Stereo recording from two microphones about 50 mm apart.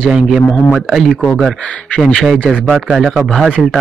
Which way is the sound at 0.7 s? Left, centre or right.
Centre.